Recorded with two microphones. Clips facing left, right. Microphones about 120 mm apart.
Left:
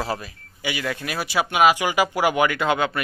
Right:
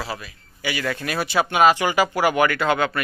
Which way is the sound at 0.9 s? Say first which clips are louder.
Right 2 dB; 5° left (ahead or behind).